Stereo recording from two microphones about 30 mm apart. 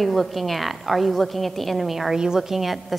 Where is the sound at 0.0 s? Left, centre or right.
Centre.